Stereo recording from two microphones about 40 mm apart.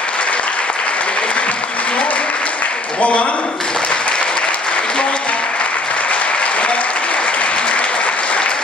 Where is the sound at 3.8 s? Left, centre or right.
Left.